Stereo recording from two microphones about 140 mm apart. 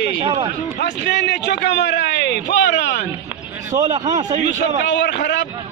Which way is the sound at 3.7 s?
30° right (ahead or behind).